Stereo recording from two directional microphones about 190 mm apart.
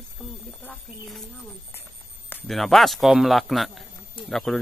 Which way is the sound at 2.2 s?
5° left (ahead or behind).